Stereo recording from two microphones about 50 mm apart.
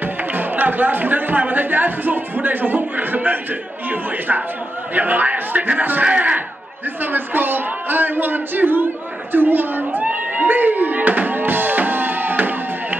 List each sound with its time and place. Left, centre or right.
0.0 s speech: right
4.9 s a man's voice: right
7.1 s speech: right
9.3 s a sound: right